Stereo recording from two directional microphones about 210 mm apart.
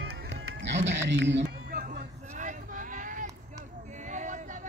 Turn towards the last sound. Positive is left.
turn(degrees=-35)  # may be behind; listen again after turning